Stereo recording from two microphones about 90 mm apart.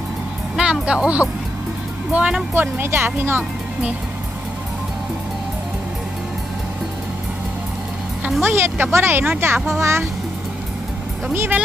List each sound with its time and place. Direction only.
0.6 s speech: 10° right (ahead or behind)
2.5 s speech: 25° right (ahead or behind)
8.4 s a child's voice: 25° right (ahead or behind)